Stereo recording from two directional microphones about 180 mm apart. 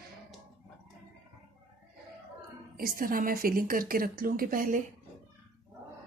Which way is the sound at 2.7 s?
50° right (ahead or behind).